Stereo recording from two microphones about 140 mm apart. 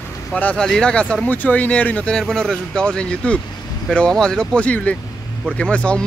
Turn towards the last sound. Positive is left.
turn(degrees=10)  # may be behind; listen again after turning